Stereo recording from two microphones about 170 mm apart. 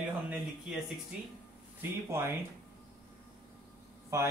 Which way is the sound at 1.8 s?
15° right (ahead or behind).